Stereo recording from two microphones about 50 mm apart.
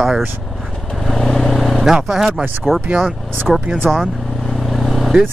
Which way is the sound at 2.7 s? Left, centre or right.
Right.